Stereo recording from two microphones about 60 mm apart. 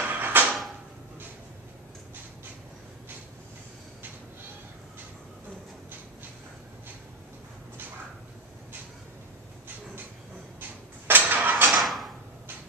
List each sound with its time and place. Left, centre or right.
0.0 s a sound: right
11.1 s vehicle: right
11.7 s drawer open or close: centre